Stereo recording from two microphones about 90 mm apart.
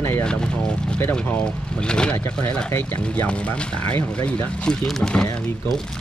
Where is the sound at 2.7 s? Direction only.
25° left (ahead or behind).